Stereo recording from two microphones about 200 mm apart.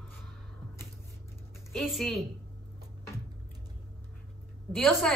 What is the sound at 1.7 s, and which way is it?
Speech, centre (ahead or behind).